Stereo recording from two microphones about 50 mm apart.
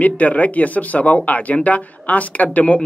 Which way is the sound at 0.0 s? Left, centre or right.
Left.